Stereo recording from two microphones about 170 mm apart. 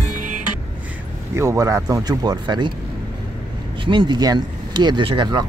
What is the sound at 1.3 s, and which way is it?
Speech, 15° right (ahead or behind).